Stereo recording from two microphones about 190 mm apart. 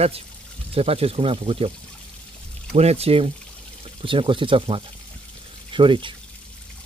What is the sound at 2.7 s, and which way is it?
Speech, 35° right (ahead or behind).